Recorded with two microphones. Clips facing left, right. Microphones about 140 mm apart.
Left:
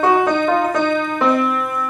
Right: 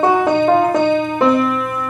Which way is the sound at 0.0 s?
25° right (ahead or behind).